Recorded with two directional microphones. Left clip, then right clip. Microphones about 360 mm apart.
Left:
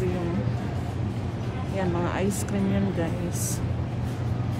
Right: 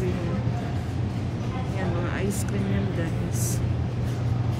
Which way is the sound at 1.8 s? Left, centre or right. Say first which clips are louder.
Left 4 dB; centre.